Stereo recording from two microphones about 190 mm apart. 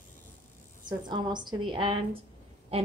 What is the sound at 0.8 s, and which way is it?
A woman's voice, 25° right (ahead or behind).